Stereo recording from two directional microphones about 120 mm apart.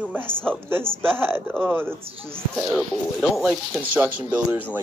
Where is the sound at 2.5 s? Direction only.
Centre (ahead or behind).